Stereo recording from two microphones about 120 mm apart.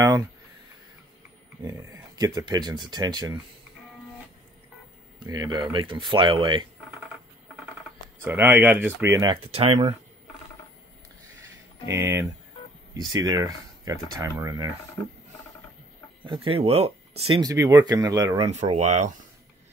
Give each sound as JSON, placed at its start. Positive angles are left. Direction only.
{"t": 1.6, "sound": "speech", "side_deg": -30}
{"t": 5.2, "sound": "speech", "side_deg": -35}
{"t": 8.2, "sound": "speech", "side_deg": -20}
{"t": 9.4, "sound": "speech", "side_deg": -55}
{"t": 11.9, "sound": "speech", "side_deg": -20}
{"t": 16.2, "sound": "speech", "side_deg": -45}
{"t": 17.4, "sound": "speech", "side_deg": -30}
{"t": 18.7, "sound": "speech", "side_deg": -70}